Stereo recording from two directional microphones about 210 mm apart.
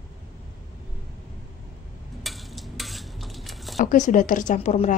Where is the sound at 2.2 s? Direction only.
Centre (ahead or behind).